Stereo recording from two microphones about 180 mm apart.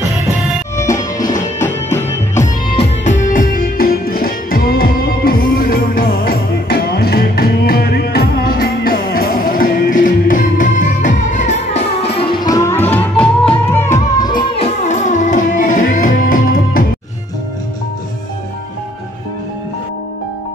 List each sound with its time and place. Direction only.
0.7 s music: 20° left (ahead or behind)
2.7 s music: 40° left (ahead or behind); by 14.4 s 20° left (ahead or behind)
14.6 s music: 40° left (ahead or behind)